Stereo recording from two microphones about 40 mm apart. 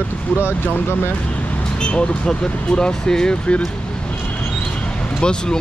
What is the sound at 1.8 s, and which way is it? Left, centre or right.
Speech, left.